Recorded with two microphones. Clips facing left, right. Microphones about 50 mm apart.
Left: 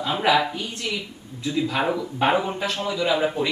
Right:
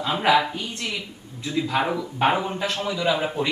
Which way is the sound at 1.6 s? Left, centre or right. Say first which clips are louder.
Right 2 dB; centre.